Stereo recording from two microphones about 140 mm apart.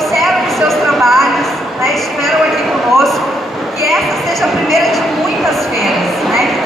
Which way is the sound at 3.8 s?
Centre (ahead or behind).